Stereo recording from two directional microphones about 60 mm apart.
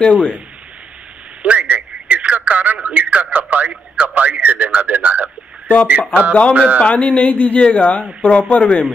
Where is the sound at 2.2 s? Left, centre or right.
Right.